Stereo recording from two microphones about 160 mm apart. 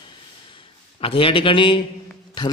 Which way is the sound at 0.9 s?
35° left (ahead or behind).